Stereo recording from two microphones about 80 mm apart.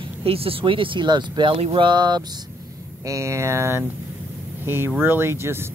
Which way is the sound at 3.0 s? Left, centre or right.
Right.